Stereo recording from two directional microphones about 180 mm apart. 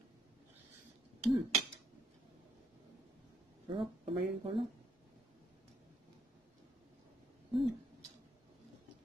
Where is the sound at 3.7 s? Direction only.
30° right (ahead or behind).